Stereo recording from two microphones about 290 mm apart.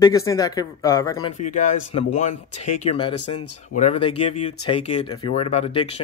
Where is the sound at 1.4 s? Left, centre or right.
Left.